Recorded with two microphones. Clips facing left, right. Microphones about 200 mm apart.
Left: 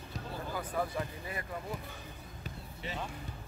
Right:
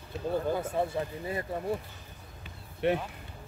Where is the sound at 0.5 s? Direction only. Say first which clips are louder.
Right 5 dB; 25° right (ahead or behind).